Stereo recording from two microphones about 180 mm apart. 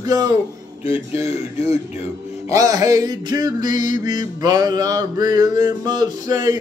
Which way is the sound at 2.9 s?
20° right (ahead or behind).